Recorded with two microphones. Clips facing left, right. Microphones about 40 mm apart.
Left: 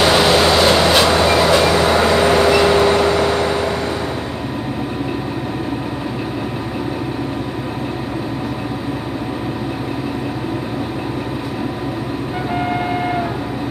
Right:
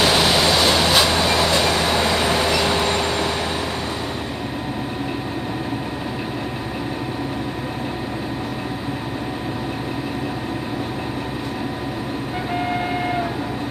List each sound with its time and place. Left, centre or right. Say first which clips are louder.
0.1 s vehicle: left 4 dB; centre
12.5 s vehicle: left 3 dB; centre